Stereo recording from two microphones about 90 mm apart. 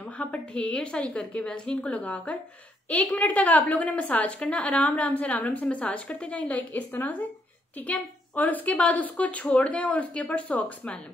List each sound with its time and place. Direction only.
0.2 s a woman's voice: 15° left (ahead or behind)